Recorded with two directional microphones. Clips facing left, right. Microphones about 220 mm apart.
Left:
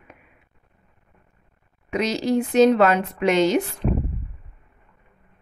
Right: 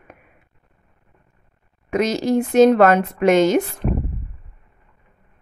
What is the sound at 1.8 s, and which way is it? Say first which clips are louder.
Speech: right 3 dB; 50° right (ahead or behind).